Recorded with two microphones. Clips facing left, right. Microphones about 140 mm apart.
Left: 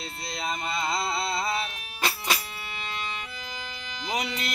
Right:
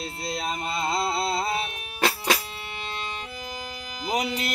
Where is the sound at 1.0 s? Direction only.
25° right (ahead or behind).